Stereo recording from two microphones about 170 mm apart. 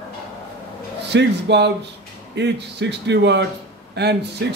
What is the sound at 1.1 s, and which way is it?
Speech, 90° right.